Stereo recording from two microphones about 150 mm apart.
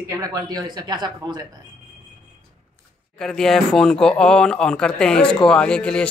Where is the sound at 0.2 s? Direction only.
25° right (ahead or behind).